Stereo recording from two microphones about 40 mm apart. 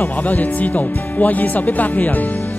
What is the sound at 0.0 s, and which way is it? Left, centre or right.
Speech, left.